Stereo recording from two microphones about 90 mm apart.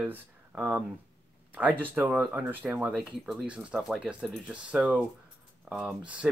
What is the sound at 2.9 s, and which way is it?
Speech, centre (ahead or behind).